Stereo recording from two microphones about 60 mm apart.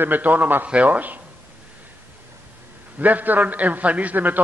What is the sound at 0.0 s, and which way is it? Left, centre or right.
A man's voice, right.